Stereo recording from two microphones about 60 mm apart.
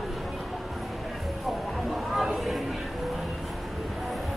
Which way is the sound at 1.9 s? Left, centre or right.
Centre.